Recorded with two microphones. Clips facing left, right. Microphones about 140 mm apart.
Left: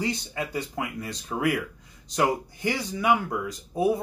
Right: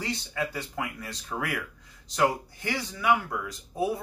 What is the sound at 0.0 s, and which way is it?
Speech, 20° left (ahead or behind).